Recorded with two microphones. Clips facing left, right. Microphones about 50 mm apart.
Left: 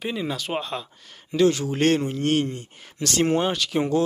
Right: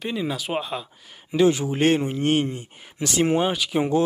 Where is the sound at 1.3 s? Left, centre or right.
Centre.